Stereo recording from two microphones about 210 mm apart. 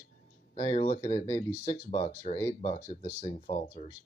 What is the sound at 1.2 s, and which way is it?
Speech, 15° left (ahead or behind).